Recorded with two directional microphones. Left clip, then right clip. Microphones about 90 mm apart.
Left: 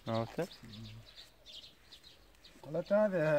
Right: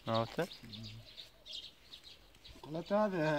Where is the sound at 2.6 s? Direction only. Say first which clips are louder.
Left 3 dB; 35° left (ahead or behind).